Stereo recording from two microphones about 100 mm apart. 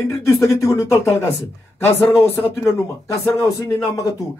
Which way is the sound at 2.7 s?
30° left (ahead or behind).